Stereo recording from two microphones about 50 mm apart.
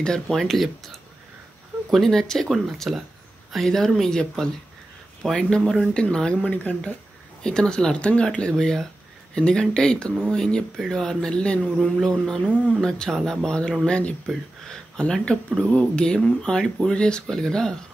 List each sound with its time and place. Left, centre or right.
0.3 s speech: centre; by 14.1 s left
14.2 s a sound: centre
15.6 s speech: centre